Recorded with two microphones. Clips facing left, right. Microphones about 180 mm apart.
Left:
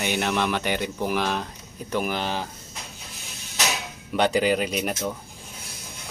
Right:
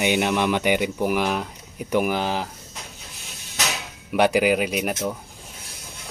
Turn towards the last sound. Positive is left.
turn(degrees=-5)  # may be behind; listen again after turning